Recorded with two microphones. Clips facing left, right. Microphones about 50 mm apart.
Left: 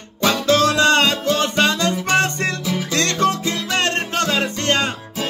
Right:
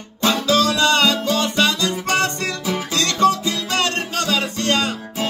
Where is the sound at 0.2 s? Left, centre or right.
Left.